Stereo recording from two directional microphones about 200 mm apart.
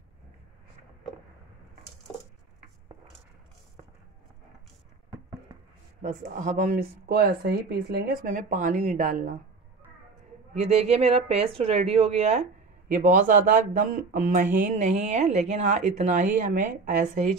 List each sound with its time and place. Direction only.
6.0 s speech: 40° right (ahead or behind)
10.5 s speech: 30° right (ahead or behind)